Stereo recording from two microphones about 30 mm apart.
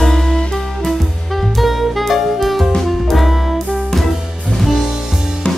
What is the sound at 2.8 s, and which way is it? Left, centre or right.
Music, centre.